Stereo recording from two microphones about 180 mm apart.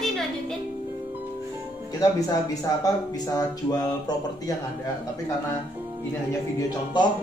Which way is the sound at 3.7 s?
20° left (ahead or behind).